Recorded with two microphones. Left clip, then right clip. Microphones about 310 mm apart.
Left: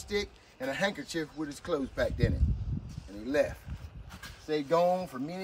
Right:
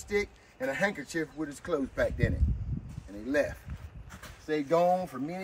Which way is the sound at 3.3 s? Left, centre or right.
Centre.